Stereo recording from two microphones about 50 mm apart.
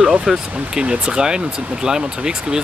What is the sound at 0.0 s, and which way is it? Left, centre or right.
Speech, centre.